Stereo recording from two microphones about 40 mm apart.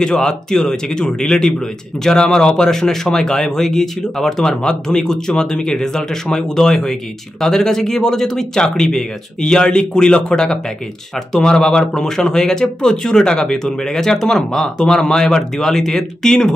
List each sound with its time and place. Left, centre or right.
0.0 s speech: centre
11.9 s speech: centre